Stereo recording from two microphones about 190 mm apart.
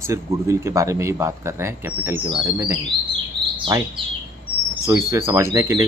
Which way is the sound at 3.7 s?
15° right (ahead or behind).